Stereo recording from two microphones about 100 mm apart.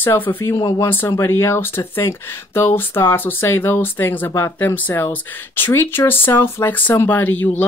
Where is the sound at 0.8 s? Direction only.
25° left (ahead or behind).